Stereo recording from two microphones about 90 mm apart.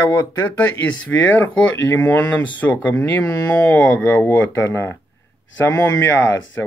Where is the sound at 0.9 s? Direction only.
15° left (ahead or behind).